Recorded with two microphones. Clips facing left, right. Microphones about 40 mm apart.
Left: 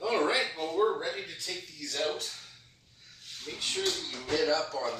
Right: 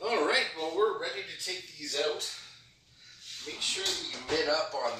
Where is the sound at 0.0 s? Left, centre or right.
Centre.